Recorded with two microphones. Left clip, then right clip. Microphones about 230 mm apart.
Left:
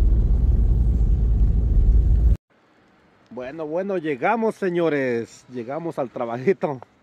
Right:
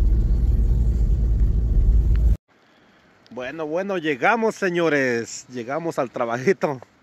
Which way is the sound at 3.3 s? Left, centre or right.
Centre.